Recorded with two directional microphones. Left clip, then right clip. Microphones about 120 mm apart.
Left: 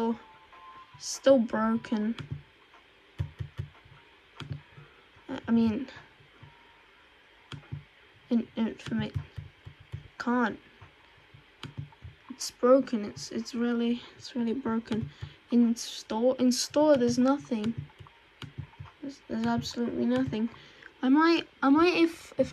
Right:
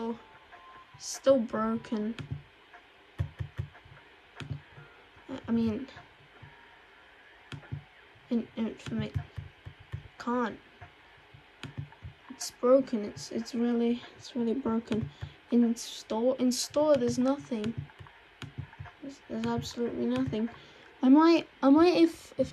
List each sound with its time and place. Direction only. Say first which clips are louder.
0.9 s speech: left 2 dB; 20° right (ahead or behind)
3.2 s a sound: right 1 dB; 15° right (ahead or behind)
5.3 s speech: left 3 dB; 25° right (ahead or behind)
8.3 s speech: left 3 dB; 25° right (ahead or behind)
10.1 s speech: left 3 dB; 25° right (ahead or behind)
12.4 s speech: left 1 dB; 25° right (ahead or behind)
19.0 s speech: left 3 dB; 20° right (ahead or behind)
21.4 s a woman's voice: right 1 dB; 35° right (ahead or behind)